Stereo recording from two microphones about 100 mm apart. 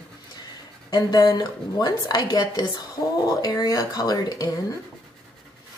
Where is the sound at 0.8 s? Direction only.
40° left (ahead or behind).